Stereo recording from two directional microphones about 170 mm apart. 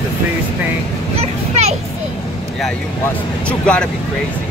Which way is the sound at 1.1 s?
40° right (ahead or behind).